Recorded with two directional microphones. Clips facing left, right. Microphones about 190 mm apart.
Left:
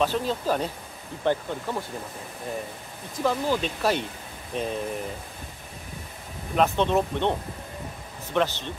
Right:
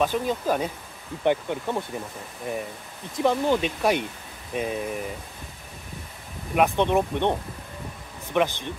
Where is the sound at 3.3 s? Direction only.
20° right (ahead or behind).